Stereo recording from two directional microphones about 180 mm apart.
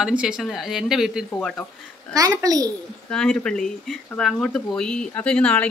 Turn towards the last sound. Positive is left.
turn(degrees=5)  # may be behind; listen again after turning